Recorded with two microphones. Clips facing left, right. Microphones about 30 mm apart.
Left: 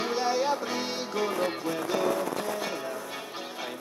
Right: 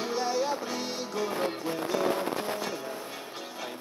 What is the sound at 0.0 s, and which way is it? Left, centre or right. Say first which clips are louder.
Music: left 2 dB; left.